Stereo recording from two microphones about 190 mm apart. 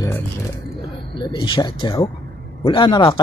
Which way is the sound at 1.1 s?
25° left (ahead or behind).